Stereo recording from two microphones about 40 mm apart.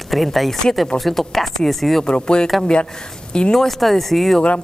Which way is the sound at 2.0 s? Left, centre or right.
Left.